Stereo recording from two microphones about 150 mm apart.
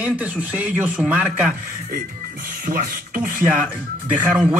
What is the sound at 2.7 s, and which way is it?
Beatboxing, 70° right (ahead or behind).